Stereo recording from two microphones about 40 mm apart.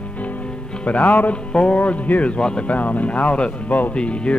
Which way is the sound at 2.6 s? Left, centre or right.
Left.